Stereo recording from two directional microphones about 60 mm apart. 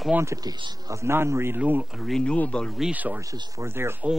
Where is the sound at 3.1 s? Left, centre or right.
Right.